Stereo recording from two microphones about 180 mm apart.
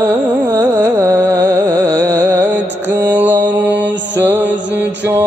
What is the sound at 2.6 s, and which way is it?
Mantra, 75° right (ahead or behind).